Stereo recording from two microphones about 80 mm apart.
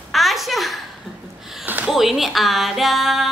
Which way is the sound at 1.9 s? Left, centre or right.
Centre.